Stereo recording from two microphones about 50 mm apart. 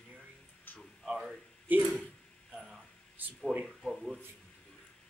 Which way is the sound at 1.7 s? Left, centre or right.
Right.